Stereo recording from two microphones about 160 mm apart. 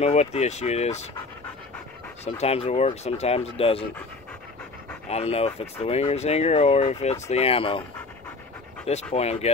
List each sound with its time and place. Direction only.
0.0 s speech: 40° left (ahead or behind)
2.2 s speech: 40° left (ahead or behind)
5.1 s speech: 40° left (ahead or behind)
8.8 s speech: 40° left (ahead or behind)